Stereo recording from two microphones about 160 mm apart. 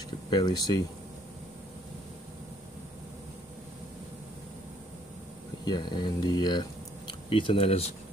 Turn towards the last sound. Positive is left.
turn(degrees=40)  # may be behind; listen again after turning